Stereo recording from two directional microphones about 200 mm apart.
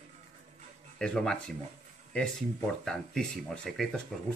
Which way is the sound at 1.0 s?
5° left (ahead or behind).